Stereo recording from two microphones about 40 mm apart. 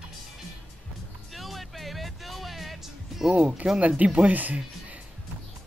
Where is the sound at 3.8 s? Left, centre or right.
Right.